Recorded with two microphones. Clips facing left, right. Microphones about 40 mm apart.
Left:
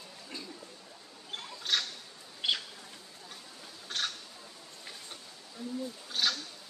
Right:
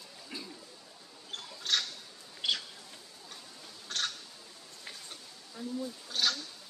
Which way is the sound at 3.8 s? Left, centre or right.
Centre.